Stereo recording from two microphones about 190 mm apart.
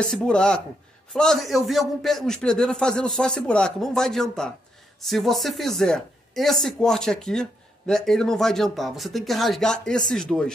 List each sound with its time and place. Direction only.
0.0 s speech: 5° left (ahead or behind)